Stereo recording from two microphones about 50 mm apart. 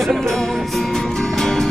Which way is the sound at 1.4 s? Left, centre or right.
Centre.